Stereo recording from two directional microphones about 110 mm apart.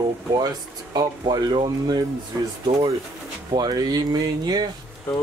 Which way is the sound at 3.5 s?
40° right (ahead or behind).